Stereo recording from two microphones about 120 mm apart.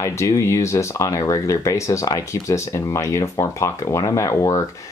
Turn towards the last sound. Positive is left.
turn(degrees=25)  # may be behind; listen again after turning